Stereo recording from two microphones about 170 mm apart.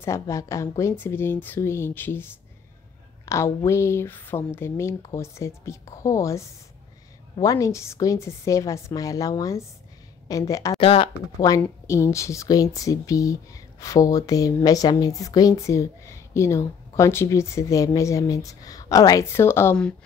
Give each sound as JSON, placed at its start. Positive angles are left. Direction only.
{"t": 0.0, "sound": "speech", "side_deg": 15}
{"t": 3.3, "sound": "a woman's voice", "side_deg": 15}
{"t": 10.8, "sound": "speech", "side_deg": 30}